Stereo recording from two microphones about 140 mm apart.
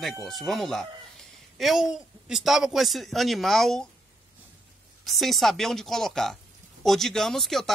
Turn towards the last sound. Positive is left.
turn(degrees=0)  # may be behind; listen again after turning